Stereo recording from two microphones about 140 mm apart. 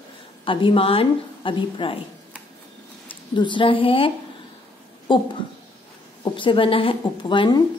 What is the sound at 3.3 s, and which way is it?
Speech, 35° left (ahead or behind).